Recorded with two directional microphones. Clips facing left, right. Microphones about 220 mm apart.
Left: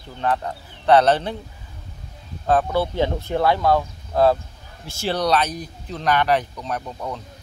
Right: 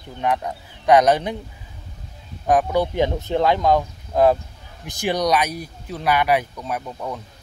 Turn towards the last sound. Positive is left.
turn(degrees=-10)  # may be behind; listen again after turning